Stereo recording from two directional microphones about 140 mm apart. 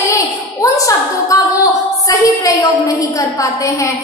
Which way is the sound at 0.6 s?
25° left (ahead or behind).